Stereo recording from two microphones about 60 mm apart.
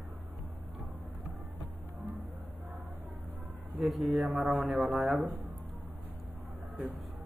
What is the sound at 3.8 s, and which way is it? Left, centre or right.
Speech, centre.